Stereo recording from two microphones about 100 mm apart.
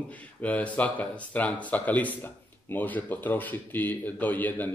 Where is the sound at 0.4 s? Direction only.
15° left (ahead or behind).